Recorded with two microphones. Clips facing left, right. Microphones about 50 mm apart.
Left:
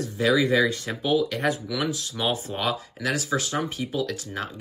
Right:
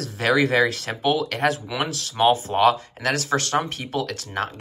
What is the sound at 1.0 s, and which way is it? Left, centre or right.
Speech, right.